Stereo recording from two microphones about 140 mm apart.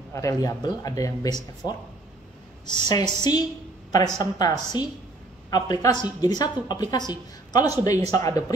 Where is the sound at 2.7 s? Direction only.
30° left (ahead or behind).